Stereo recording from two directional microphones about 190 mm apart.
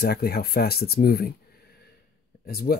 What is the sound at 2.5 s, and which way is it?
Speech, 50° left (ahead or behind).